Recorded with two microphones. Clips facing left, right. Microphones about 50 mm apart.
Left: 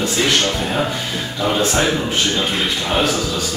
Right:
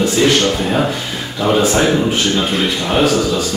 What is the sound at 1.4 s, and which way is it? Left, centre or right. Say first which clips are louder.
A man's voice: right 4 dB; centre.